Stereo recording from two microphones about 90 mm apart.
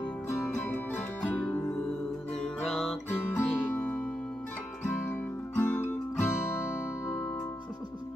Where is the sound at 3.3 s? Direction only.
25° left (ahead or behind).